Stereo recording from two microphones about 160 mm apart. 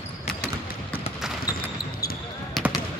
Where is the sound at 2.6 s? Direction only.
Centre (ahead or behind).